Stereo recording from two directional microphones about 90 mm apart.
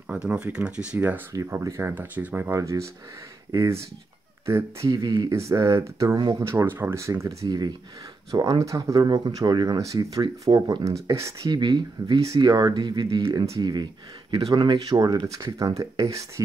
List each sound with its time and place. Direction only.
0.1 s speech: 15° right (ahead or behind)
1.3 s speech: 35° right (ahead or behind); by 2.5 s 20° right (ahead or behind)
2.5 s speech: 35° right (ahead or behind)
5.3 s speech: 35° right (ahead or behind)
11.4 s speech: 50° right (ahead or behind)
15.6 s speech: 40° right (ahead or behind)